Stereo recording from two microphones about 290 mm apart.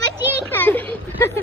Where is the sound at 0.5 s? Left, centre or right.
Centre.